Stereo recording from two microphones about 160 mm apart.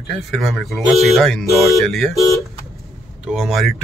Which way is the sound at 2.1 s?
20° left (ahead or behind).